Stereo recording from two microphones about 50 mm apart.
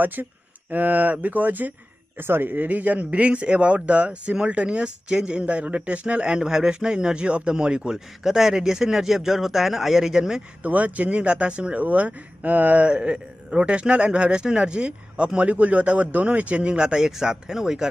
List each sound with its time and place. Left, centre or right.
0.0 s speech: right
2.1 s a man's voice: right; by 5.4 s centre
5.4 s a man's voice: right; by 10.4 s centre
10.6 s speech: right
12.8 s a man's voice: centre